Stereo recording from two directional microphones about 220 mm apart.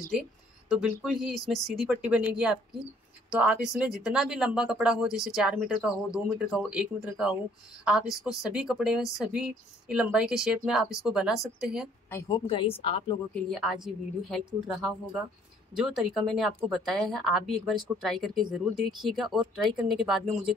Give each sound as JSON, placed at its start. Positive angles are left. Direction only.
{"t": 0.7, "sound": "speech", "side_deg": 0}
{"t": 12.1, "sound": "a woman's voice", "side_deg": 15}
{"t": 13.3, "sound": "speech", "side_deg": 0}